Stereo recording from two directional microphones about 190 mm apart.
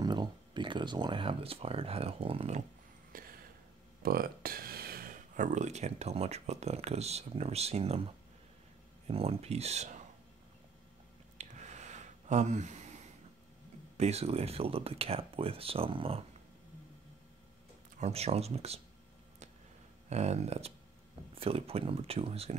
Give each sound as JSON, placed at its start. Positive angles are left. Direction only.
{"t": 0.0, "sound": "speech", "side_deg": -25}
{"t": 3.1, "sound": "a sound", "side_deg": -50}
{"t": 4.0, "sound": "speech", "side_deg": -50}
{"t": 11.3, "sound": "a sound", "side_deg": -40}
{"t": 13.9, "sound": "speech", "side_deg": -35}
{"t": 17.9, "sound": "speech", "side_deg": -35}
{"t": 20.1, "sound": "speech", "side_deg": -35}